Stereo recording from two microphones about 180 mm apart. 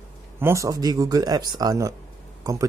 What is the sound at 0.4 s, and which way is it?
Speech, 15° right (ahead or behind).